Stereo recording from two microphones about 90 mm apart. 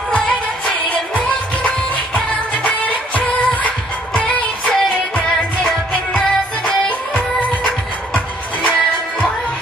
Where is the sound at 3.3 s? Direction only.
15° left (ahead or behind).